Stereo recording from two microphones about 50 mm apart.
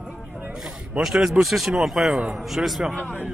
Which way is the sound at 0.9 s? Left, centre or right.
Centre.